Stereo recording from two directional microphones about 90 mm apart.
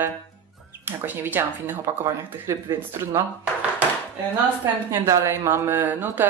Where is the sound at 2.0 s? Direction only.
35° right (ahead or behind).